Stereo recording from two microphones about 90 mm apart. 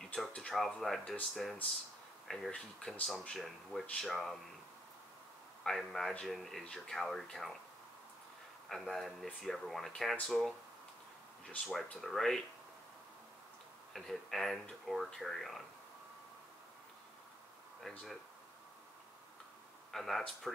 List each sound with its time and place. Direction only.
0.0 s speech: 10° left (ahead or behind)
5.6 s speech: centre (ahead or behind)
8.6 s speech: centre (ahead or behind)
11.4 s speech: 5° left (ahead or behind)
13.9 s speech: centre (ahead or behind)
17.9 s speech: 5° left (ahead or behind)
19.9 s speech: centre (ahead or behind)